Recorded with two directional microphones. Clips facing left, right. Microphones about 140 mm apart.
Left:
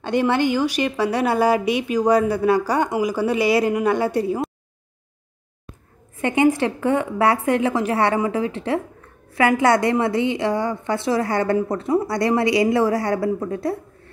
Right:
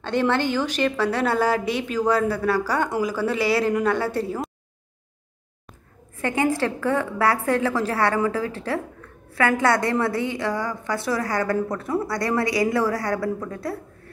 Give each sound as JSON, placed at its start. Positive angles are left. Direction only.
{"t": 0.0, "sound": "a woman's voice", "side_deg": 15}
{"t": 6.1, "sound": "a woman's voice", "side_deg": 20}